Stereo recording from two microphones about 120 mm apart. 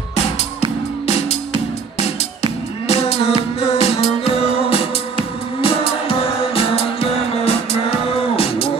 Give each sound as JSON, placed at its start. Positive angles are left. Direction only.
{"t": 2.9, "sound": "music", "side_deg": 55}